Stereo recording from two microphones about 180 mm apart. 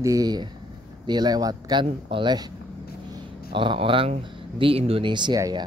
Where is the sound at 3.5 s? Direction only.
30° right (ahead or behind).